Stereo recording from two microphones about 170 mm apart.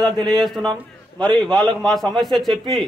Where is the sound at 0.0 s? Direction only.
30° right (ahead or behind).